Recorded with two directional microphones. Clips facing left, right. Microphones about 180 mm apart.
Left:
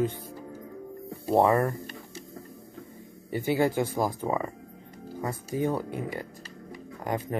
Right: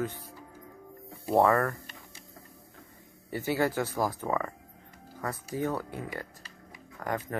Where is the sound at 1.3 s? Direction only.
20° left (ahead or behind).